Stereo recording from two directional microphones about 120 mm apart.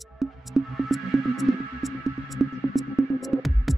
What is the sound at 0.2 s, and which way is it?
Music, centre (ahead or behind).